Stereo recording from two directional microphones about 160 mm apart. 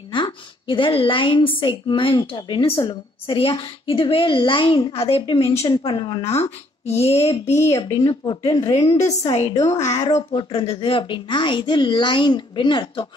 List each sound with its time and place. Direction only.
0.1 s a woman's voice: 30° left (ahead or behind)
7.2 s a woman's voice: 20° left (ahead or behind)
9.7 s speech: 45° left (ahead or behind)
10.0 s a woman's voice: 30° left (ahead or behind)